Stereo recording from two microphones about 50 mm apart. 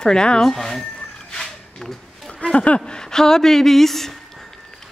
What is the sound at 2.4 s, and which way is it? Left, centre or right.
Speech, left.